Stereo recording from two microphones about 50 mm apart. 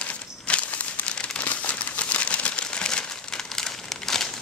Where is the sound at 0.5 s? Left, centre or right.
Left.